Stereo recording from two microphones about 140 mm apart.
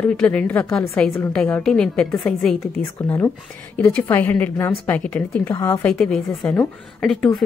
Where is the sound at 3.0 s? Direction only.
15° left (ahead or behind).